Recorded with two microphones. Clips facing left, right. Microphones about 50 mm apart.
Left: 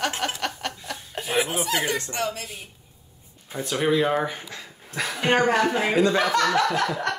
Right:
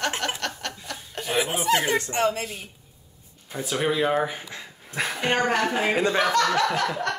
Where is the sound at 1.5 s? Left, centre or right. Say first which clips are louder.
Right 3 dB; right.